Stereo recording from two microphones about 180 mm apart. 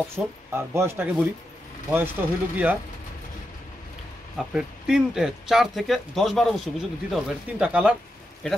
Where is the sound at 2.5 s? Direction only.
10° right (ahead or behind).